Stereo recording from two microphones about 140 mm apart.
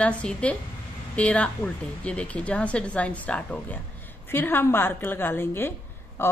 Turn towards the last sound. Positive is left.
turn(degrees=15)  # may be behind; listen again after turning